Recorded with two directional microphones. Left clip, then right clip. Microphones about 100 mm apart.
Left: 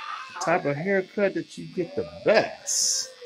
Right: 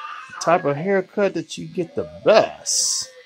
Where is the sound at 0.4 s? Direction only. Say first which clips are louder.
Right 6 dB; 15° right (ahead or behind).